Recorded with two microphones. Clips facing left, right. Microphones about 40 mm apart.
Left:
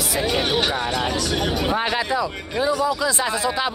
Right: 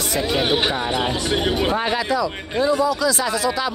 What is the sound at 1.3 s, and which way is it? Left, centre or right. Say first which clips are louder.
Speech: right 2 dB; right.